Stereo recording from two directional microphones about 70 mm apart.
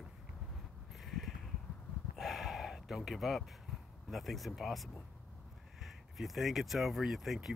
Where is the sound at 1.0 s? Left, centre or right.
Centre.